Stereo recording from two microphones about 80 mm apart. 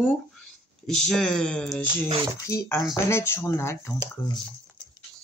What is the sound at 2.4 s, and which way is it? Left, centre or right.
Speech, left.